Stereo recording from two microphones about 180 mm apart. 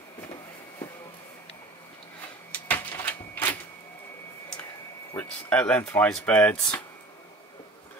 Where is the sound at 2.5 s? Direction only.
10° left (ahead or behind).